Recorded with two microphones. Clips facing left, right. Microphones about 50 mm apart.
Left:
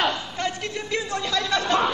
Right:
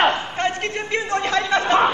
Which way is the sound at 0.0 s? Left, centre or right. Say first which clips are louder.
Right 6 dB; right.